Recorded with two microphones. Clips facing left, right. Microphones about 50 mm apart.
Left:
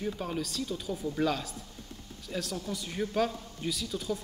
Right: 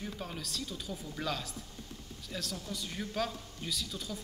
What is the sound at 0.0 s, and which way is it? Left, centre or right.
A man's voice, centre.